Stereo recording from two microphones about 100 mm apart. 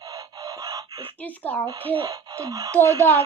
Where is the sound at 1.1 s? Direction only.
15° left (ahead or behind).